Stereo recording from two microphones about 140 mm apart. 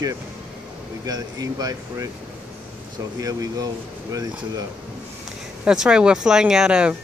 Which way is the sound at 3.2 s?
25° right (ahead or behind).